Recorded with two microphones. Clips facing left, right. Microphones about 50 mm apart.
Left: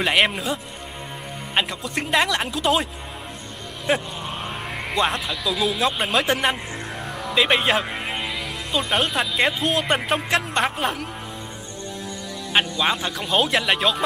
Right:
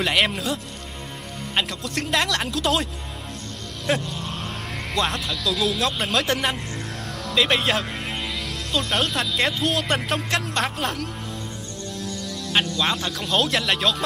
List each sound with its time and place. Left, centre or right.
0.0 s speech: centre
7.2 s music: centre
8.7 s speech: centre